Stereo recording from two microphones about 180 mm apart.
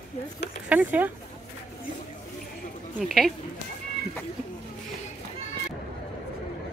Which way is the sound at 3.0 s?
Centre (ahead or behind).